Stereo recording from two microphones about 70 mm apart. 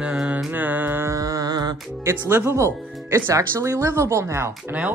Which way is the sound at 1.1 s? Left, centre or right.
Right.